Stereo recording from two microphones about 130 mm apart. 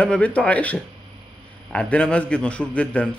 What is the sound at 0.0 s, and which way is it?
Speech, 10° left (ahead or behind).